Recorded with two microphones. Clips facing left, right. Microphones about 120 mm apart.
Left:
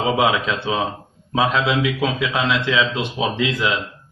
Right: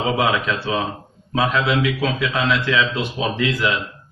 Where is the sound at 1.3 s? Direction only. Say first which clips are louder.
Even; 20° left (ahead or behind).